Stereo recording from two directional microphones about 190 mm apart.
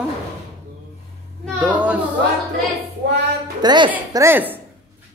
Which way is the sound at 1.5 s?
5° right (ahead or behind).